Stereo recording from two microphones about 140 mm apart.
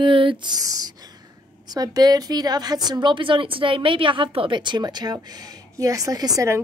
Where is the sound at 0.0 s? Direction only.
40° right (ahead or behind).